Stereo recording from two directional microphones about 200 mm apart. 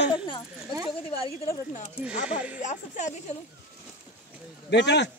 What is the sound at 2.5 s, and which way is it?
Speech, 35° left (ahead or behind).